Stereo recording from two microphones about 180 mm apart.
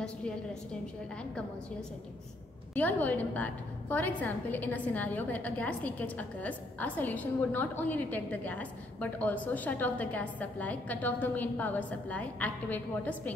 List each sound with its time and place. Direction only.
2.7 s a woman's voice: 10° left (ahead or behind)